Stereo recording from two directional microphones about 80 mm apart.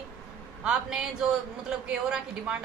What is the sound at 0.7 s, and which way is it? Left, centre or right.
Speech, centre.